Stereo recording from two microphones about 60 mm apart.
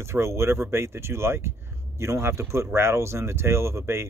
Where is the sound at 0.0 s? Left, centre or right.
Right.